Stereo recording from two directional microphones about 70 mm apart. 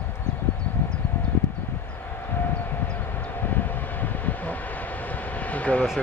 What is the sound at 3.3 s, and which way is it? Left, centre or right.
Vehicle, left.